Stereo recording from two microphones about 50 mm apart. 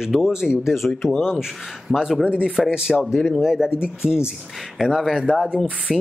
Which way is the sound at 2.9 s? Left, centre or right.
Centre.